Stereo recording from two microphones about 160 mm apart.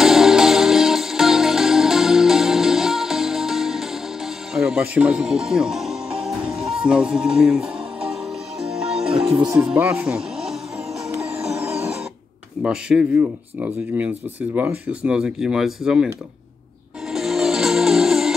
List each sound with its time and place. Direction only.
0.0 s music: centre (ahead or behind)
9.3 s speech: 20° right (ahead or behind)
9.6 s speech: 5° right (ahead or behind)
12.6 s speech: 5° right (ahead or behind)
17.1 s music: centre (ahead or behind)